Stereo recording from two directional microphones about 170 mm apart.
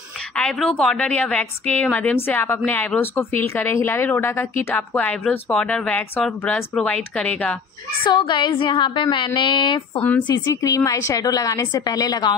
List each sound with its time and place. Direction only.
0.4 s a woman's voice: 5° left (ahead or behind)
8.0 s a woman's voice: 25° left (ahead or behind)
9.9 s a woman's voice: 10° left (ahead or behind)